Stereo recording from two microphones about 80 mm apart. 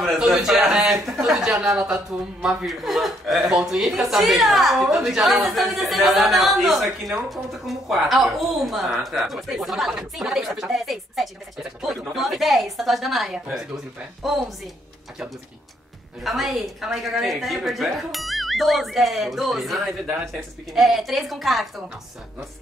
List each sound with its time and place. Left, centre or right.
0.0 s a woman's voice: centre
16.3 s a woman's voice: centre